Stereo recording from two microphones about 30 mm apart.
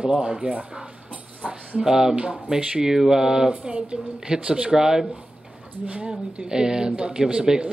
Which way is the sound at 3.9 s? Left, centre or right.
Right.